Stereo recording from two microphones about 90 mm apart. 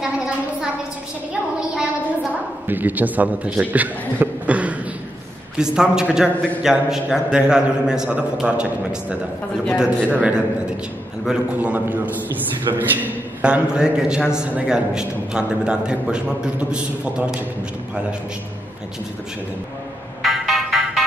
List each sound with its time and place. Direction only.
2.6 s a man's voice: 20° right (ahead or behind)
10.0 s a man's voice: 15° right (ahead or behind)
11.5 s a man's voice: 20° right (ahead or behind)
20.2 s music: centre (ahead or behind)